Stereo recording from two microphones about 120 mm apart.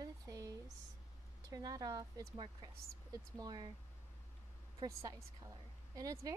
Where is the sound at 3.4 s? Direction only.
35° right (ahead or behind).